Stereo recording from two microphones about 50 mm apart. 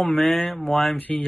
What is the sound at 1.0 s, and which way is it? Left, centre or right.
Mantra, left.